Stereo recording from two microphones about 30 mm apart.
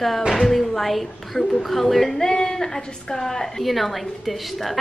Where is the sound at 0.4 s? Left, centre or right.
Centre.